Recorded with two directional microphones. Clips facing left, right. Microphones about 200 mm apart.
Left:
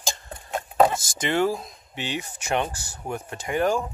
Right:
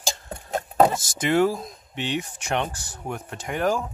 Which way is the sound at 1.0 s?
Centre (ahead or behind).